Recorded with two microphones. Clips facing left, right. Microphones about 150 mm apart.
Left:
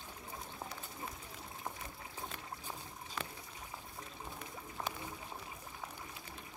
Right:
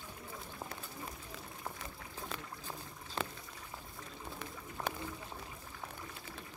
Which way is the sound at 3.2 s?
30° right (ahead or behind).